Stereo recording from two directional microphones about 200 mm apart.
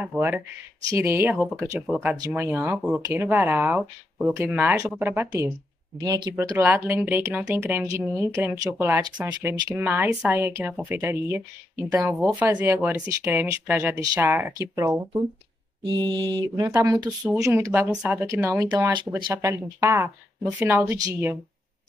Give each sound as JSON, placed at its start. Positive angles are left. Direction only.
{"t": 0.0, "sound": "speech", "side_deg": -10}
{"t": 2.1, "sound": "speech", "side_deg": -15}
{"t": 12.4, "sound": "speech", "side_deg": -10}
{"t": 15.9, "sound": "mantra", "side_deg": -20}
{"t": 17.4, "sound": "speech", "side_deg": -15}